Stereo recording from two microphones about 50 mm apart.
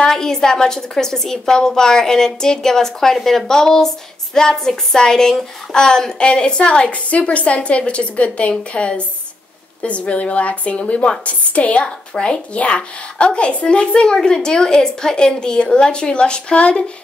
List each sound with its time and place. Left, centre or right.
0.1 s a woman's voice: centre